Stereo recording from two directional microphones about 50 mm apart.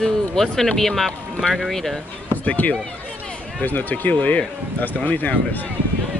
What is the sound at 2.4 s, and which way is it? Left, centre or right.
Speech, left.